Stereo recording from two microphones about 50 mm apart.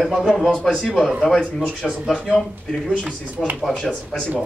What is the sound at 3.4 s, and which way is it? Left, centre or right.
Speech, centre.